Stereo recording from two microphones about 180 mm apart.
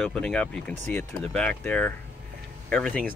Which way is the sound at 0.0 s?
5° left (ahead or behind).